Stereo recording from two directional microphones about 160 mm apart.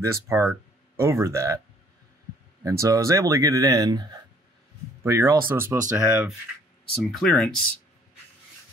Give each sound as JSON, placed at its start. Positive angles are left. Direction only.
{"t": 0.0, "sound": "speech", "side_deg": -20}
{"t": 2.6, "sound": "speech", "side_deg": -20}
{"t": 7.1, "sound": "speech", "side_deg": 0}